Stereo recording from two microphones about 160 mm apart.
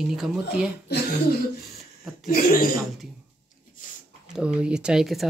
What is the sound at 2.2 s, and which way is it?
Speech, 60° left (ahead or behind).